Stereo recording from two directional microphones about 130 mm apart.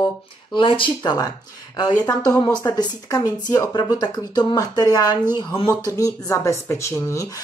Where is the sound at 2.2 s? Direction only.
25° left (ahead or behind).